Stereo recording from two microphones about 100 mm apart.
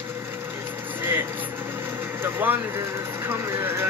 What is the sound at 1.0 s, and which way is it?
Vehicle, 20° right (ahead or behind).